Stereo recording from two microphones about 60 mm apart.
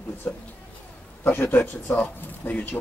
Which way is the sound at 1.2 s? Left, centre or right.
Left.